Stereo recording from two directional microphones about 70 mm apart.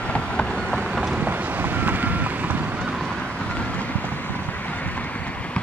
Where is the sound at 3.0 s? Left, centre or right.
Centre.